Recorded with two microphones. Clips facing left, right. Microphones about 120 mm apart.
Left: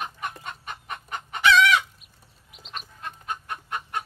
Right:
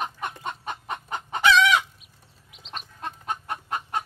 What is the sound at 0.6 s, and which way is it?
Chicken, 25° right (ahead or behind).